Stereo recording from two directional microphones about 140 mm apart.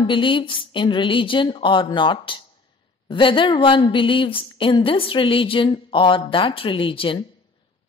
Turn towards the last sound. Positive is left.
turn(degrees=40)  # may be behind; listen again after turning